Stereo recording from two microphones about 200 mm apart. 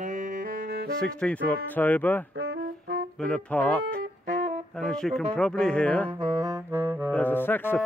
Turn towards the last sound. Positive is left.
turn(degrees=10)  # may be behind; listen again after turning